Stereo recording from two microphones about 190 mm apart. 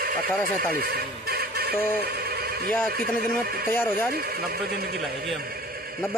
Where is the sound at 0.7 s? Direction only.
55° right (ahead or behind).